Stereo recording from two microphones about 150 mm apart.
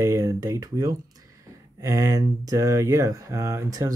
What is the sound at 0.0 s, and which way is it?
Speech, 20° right (ahead or behind).